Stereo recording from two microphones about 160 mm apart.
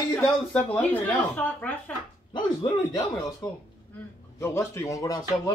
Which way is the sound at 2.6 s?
25° left (ahead or behind).